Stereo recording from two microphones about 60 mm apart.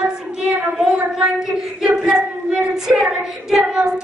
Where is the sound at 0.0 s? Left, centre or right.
Centre.